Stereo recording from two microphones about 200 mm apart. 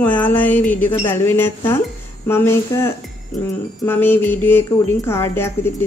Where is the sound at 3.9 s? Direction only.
10° left (ahead or behind).